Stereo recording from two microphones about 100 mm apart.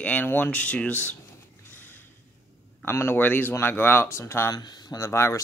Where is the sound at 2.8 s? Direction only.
25° left (ahead or behind).